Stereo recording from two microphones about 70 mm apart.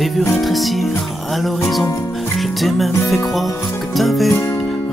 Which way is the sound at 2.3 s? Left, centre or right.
Centre.